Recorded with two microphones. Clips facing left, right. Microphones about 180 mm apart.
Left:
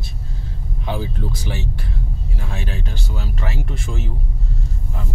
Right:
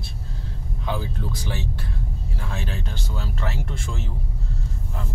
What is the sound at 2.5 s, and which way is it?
Speech, 10° left (ahead or behind).